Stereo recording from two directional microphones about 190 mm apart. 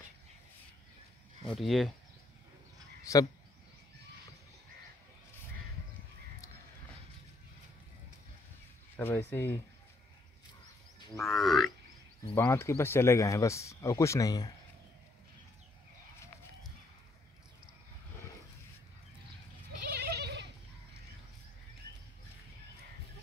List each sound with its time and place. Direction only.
1.5 s livestock: centre (ahead or behind)
3.0 s a sound: 15° left (ahead or behind)
8.9 s speech: 10° left (ahead or behind)
11.1 s livestock: centre (ahead or behind)
12.4 s speech: 15° left (ahead or behind)
20.0 s goat: 60° right (ahead or behind)